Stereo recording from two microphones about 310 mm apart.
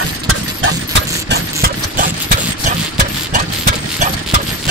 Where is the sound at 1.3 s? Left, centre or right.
Right.